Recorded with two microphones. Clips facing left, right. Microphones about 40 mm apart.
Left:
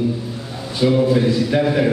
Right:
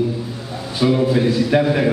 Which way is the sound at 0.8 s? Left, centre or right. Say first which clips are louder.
Left 1 dB; centre.